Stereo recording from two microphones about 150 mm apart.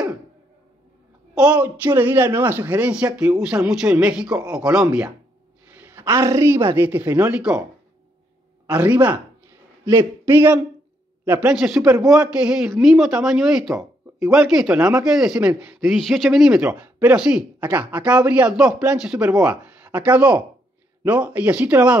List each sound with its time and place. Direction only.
1.3 s speech: 10° right (ahead or behind)
8.6 s speech: 10° right (ahead or behind)